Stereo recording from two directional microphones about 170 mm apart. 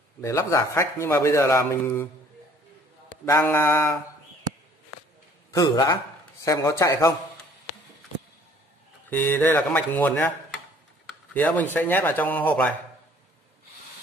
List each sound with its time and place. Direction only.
0.2 s a man's voice: 15° left (ahead or behind)
3.3 s mantra: 15° left (ahead or behind)
5.5 s mantra: 20° left (ahead or behind)
6.4 s a man's voice: 20° left (ahead or behind)
9.1 s a man's voice: 10° left (ahead or behind)
11.3 s a man's voice: 10° left (ahead or behind)